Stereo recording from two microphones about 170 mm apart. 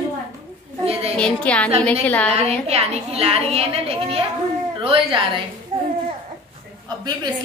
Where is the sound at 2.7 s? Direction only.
35° right (ahead or behind).